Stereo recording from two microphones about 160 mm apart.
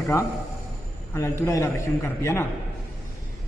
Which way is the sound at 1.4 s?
15° left (ahead or behind).